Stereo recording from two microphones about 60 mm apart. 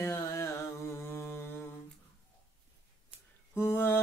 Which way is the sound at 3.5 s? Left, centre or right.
Left.